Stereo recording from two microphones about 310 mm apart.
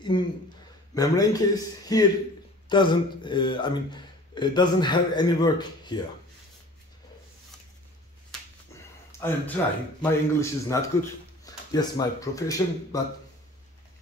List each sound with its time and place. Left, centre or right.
0.1 s speech: centre
8.3 s a sound: centre
9.6 s speech: centre